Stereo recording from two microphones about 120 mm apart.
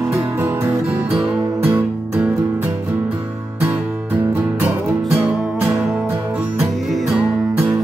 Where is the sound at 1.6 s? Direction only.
20° right (ahead or behind).